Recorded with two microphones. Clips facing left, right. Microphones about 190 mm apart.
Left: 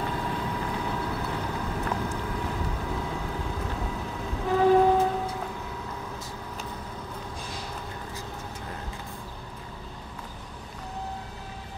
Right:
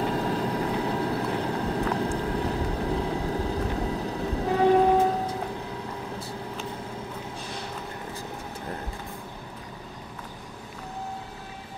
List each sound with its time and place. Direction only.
0.0 s vehicle: 35° right (ahead or behind)